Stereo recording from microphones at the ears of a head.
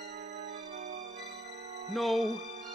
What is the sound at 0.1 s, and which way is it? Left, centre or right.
Music, right.